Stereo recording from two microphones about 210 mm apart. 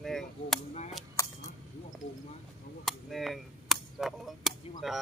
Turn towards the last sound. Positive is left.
turn(degrees=0)  # may be behind; listen again after turning